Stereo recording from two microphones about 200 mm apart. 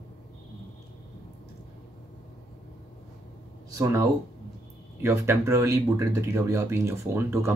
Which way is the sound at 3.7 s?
15° right (ahead or behind).